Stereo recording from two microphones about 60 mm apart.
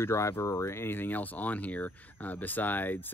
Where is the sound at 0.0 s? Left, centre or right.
Left.